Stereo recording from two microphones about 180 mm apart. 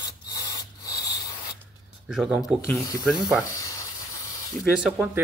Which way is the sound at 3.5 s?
15° left (ahead or behind).